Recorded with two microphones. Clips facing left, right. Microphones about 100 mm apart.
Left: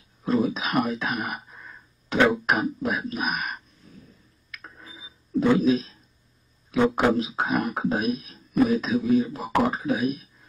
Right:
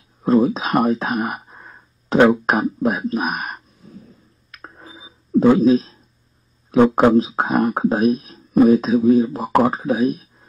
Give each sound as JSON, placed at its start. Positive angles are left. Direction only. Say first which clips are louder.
{"t": 0.2, "sound": "speech", "louder": "right 8 dB", "side_deg": -40}
{"t": 4.5, "sound": "a sound", "louder": "right 4 dB", "side_deg": -35}
{"t": 7.0, "sound": "speech", "louder": "right 8 dB", "side_deg": -40}